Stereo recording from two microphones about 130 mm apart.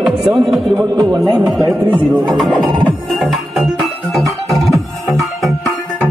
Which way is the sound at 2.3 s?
Centre (ahead or behind).